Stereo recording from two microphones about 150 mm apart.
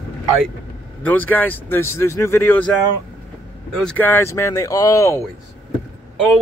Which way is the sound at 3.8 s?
10° left (ahead or behind).